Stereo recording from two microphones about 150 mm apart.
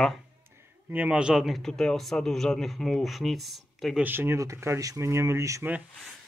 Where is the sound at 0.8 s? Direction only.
10° right (ahead or behind).